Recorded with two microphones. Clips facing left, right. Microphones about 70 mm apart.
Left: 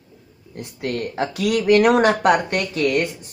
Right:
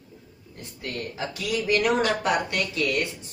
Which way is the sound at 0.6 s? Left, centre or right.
Left.